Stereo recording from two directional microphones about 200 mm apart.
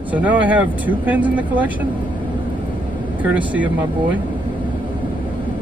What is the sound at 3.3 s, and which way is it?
Speech, 5° right (ahead or behind).